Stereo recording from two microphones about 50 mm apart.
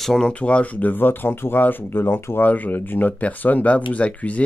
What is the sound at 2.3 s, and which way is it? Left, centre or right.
Speech, left.